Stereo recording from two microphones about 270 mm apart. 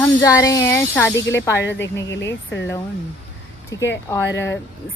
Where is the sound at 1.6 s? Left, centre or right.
Left.